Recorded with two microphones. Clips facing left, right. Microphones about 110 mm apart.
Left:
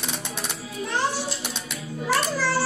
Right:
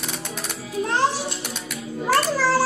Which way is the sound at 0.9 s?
90° right.